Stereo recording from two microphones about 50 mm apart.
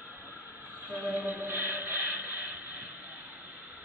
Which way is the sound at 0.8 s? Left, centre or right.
Right.